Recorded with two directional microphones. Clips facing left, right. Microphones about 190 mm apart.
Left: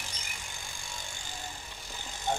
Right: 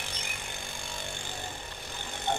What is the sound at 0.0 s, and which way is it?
Vehicle, 60° right (ahead or behind).